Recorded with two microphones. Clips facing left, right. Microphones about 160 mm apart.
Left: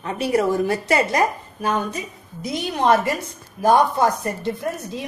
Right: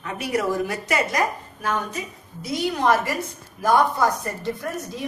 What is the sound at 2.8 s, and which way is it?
A woman's voice, 20° left (ahead or behind).